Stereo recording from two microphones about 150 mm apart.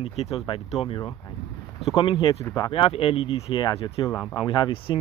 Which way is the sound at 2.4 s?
25° left (ahead or behind).